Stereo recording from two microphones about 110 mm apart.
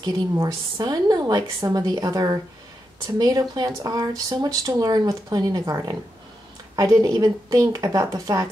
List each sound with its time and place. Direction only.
0.0 s speech: 40° right (ahead or behind)